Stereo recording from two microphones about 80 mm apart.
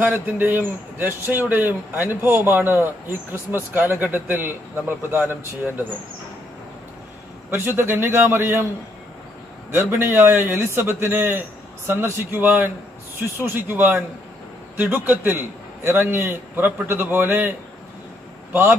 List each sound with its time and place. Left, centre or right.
0.0 s a man's voice: right
7.5 s a man's voice: right
9.8 s a man's voice: right